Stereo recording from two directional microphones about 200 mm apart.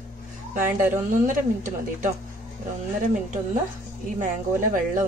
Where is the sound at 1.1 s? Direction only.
40° right (ahead or behind).